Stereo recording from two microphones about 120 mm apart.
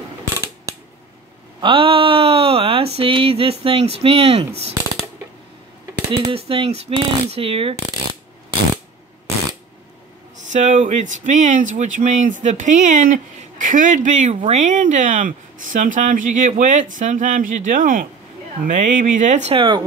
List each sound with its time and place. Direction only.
1.6 s a sound: 50° right (ahead or behind)
6.1 s speech: 55° right (ahead or behind)
10.5 s speech: 90° right
19.5 s speech: 45° right (ahead or behind)